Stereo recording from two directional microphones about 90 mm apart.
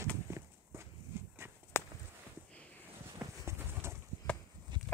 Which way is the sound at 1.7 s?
25° left (ahead or behind).